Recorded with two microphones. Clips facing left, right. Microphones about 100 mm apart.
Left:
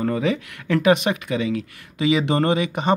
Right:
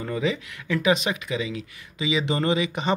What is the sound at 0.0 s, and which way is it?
Speech, 50° left (ahead or behind).